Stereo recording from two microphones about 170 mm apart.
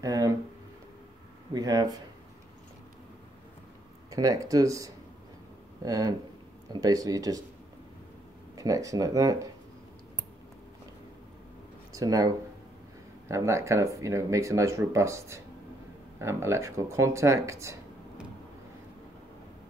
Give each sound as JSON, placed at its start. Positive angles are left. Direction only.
{"t": 0.0, "sound": "speech", "side_deg": -20}
{"t": 1.5, "sound": "speech", "side_deg": -25}
{"t": 4.1, "sound": "speech", "side_deg": -20}
{"t": 8.5, "sound": "speech", "side_deg": -20}
{"t": 11.9, "sound": "speech", "side_deg": -20}